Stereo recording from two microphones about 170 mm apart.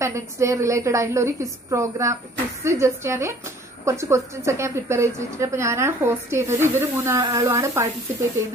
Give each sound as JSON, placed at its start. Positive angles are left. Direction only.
{"t": 0.0, "sound": "a woman's voice", "side_deg": -15}